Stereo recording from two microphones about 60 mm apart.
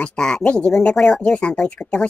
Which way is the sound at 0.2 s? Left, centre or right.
Centre.